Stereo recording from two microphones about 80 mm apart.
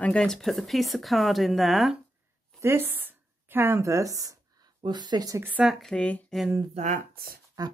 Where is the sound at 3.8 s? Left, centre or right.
Right.